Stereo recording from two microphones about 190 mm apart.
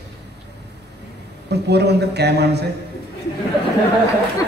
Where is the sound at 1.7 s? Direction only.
60° right (ahead or behind).